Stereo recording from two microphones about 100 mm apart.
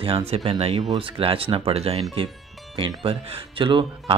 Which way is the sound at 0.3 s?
90° right.